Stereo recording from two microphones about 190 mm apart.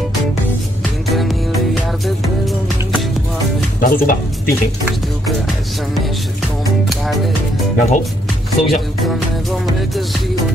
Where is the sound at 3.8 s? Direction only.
45° left (ahead or behind).